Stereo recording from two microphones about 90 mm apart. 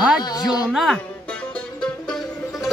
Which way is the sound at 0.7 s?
Centre (ahead or behind).